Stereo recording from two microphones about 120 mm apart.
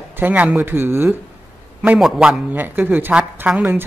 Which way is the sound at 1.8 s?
5° right (ahead or behind).